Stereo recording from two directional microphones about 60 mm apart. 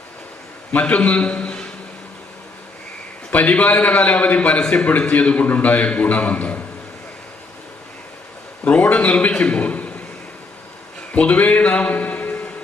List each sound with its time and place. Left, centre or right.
0.7 s a man's voice: left
3.3 s a man's voice: left
8.6 s a man's voice: left
11.1 s a man's voice: left